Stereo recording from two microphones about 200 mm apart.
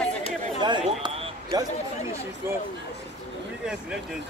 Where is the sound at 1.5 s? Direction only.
20° right (ahead or behind).